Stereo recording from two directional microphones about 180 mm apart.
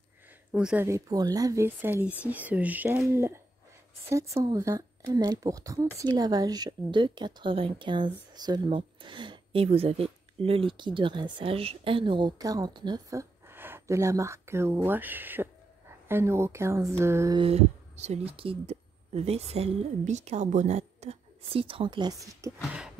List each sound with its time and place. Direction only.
0.5 s speech: 5° right (ahead or behind)
0.8 s speech: 20° right (ahead or behind)
4.4 s speech: 20° right (ahead or behind)
17.4 s speech: 35° right (ahead or behind)
22.7 s a sound: 5° right (ahead or behind)